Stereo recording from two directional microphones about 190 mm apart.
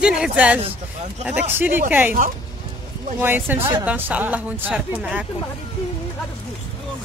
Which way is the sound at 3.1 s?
10° right (ahead or behind).